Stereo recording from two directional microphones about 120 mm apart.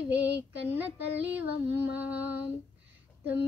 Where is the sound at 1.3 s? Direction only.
15° right (ahead or behind).